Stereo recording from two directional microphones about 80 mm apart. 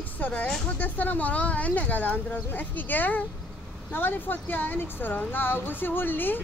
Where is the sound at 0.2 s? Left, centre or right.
Centre.